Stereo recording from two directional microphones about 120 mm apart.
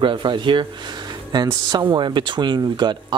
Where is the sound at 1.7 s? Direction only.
40° right (ahead or behind).